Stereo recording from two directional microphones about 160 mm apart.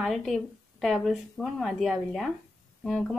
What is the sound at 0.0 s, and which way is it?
A woman's voice, centre (ahead or behind).